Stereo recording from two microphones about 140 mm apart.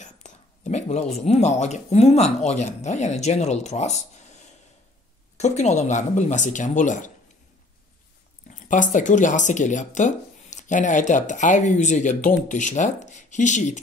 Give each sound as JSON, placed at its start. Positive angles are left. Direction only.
{"t": 0.0, "sound": "speech", "side_deg": 55}
{"t": 5.4, "sound": "speech", "side_deg": 55}
{"t": 8.5, "sound": "speech", "side_deg": 65}